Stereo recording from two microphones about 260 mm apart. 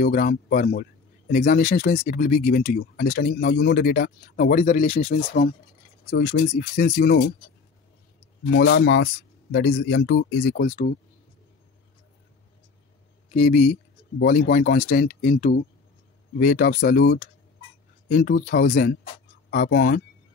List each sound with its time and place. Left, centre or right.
0.0 s speech: left
6.0 s speech: left
8.5 s speech: left
13.3 s speech: left
14.1 s speech: left